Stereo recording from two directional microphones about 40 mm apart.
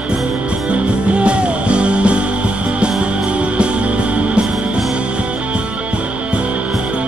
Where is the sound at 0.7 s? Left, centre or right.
Right.